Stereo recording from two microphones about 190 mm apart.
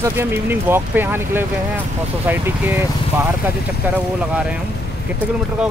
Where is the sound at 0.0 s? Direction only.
10° right (ahead or behind).